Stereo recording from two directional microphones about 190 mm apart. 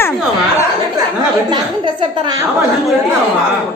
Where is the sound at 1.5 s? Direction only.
25° right (ahead or behind).